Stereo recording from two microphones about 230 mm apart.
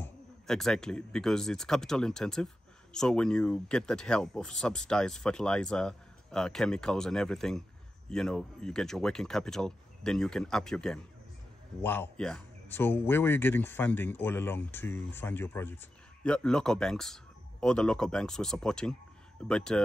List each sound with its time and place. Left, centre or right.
0.0 s speech: centre